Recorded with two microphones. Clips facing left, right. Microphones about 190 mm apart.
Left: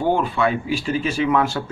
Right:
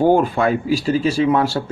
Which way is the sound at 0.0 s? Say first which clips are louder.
Right 5 dB; 45° right (ahead or behind).